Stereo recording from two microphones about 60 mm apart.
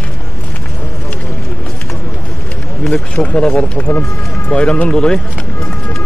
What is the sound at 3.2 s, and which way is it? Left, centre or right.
Speech, centre.